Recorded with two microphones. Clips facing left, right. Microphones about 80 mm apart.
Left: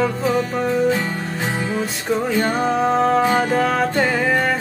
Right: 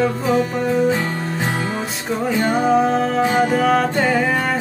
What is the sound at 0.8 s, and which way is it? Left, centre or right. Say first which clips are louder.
Music: right 1 dB; centre.